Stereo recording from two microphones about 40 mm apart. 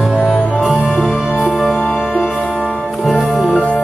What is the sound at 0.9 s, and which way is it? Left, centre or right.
Music, centre.